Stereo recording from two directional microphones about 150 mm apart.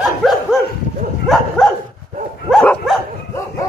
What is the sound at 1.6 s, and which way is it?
Dog, 5° left (ahead or behind).